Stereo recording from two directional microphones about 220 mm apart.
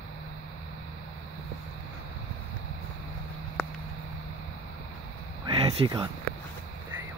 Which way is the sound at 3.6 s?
5° left (ahead or behind).